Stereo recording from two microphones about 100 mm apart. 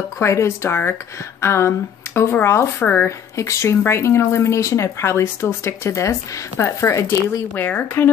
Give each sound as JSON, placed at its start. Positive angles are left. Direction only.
{"t": 0.2, "sound": "speech", "side_deg": 30}
{"t": 7.5, "sound": "speech", "side_deg": 15}